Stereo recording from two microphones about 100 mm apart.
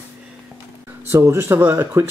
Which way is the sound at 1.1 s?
30° right (ahead or behind).